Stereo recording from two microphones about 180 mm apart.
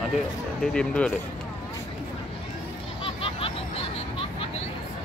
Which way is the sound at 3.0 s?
30° left (ahead or behind).